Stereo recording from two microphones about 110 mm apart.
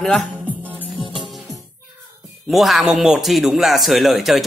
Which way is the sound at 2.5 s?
Centre (ahead or behind).